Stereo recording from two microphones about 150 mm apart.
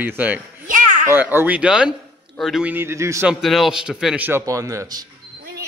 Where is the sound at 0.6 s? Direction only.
65° right (ahead or behind).